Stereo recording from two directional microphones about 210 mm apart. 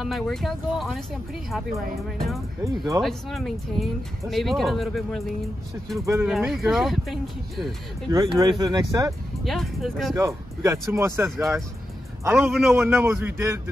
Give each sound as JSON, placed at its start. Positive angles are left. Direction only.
{"t": 0.0, "sound": "speech", "side_deg": 0}
{"t": 2.6, "sound": "speech", "side_deg": -15}
{"t": 3.0, "sound": "speech", "side_deg": 0}
{"t": 5.9, "sound": "speech", "side_deg": -15}
{"t": 6.2, "sound": "speech", "side_deg": 0}
{"t": 8.1, "sound": "speech", "side_deg": -15}
{"t": 9.4, "sound": "speech", "side_deg": 0}
{"t": 10.1, "sound": "speech", "side_deg": -15}